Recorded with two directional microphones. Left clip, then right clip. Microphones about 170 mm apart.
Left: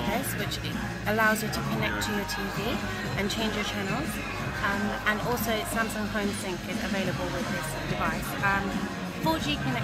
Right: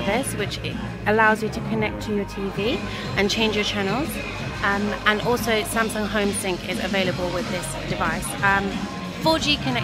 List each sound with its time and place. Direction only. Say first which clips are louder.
1.0 s speech: right 7 dB; 50° right (ahead or behind)
3.2 s speech: right 10 dB; 50° right (ahead or behind)
5.0 s speech: right 8 dB; 55° right (ahead or behind)
8.4 s speech: right 7 dB; 55° right (ahead or behind)